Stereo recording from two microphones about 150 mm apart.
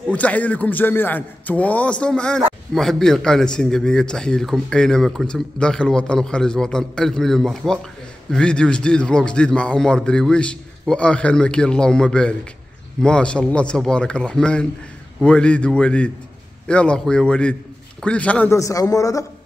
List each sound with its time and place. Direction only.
0.1 s a man's voice: 10° left (ahead or behind)
18.6 s a man's voice: 20° left (ahead or behind)